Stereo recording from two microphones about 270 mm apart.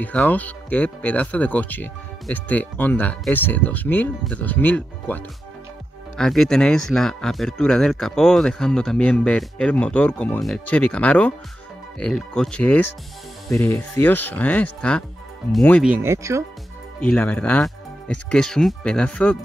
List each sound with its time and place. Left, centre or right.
0.0 s speech: centre
15.9 s speech: centre
17.0 s speech: centre